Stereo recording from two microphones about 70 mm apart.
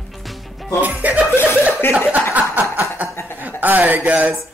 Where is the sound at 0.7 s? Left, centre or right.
Right.